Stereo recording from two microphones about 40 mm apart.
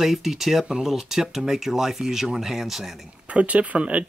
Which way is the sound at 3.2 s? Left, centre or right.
Right.